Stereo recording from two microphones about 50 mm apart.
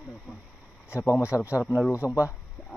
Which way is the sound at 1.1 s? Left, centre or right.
Left.